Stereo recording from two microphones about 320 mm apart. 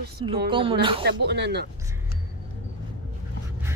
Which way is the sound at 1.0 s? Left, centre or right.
Right.